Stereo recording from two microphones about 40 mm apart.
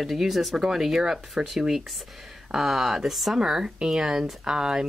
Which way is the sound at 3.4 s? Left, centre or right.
Centre.